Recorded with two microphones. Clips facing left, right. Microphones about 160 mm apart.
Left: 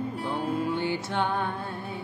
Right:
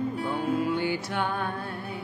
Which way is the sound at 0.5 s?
25° left (ahead or behind).